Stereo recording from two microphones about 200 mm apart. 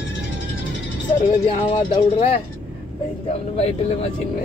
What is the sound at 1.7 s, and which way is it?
Speech, 30° left (ahead or behind).